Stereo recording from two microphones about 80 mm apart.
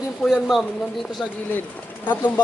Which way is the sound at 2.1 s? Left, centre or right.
Left.